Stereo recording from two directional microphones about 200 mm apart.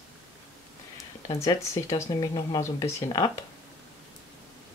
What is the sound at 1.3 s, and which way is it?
Speech, 15° left (ahead or behind).